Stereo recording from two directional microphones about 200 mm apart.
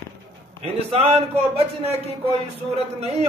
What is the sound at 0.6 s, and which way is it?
A man's voice, 30° right (ahead or behind).